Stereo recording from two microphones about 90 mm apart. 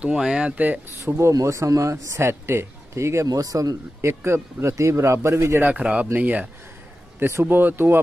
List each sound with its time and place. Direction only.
0.0 s speech: 10° right (ahead or behind)
1.0 s speech: 30° right (ahead or behind)
3.3 s speech: 45° right (ahead or behind)
4.1 s speech: 25° right (ahead or behind)
5.7 s speech: 15° right (ahead or behind)